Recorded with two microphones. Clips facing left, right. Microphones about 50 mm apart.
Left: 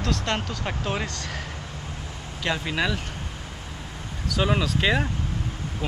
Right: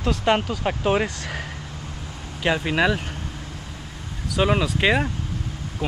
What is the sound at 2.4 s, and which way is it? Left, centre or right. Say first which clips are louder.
Speech: right 5 dB; centre.